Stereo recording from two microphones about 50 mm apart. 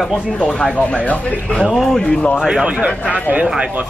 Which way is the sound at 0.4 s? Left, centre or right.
Centre.